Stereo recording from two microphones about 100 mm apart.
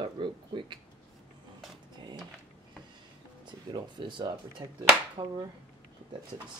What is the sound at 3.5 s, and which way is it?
Speech, 50° right (ahead or behind).